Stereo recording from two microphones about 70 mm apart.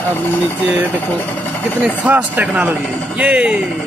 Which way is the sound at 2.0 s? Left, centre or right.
Right.